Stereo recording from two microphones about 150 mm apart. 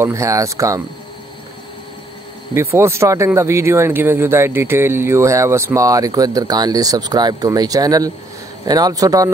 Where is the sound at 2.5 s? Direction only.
15° right (ahead or behind).